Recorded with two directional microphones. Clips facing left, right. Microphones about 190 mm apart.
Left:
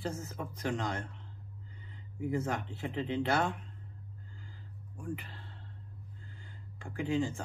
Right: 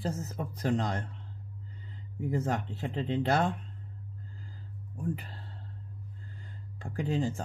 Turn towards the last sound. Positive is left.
turn(degrees=-35)  # may be behind; listen again after turning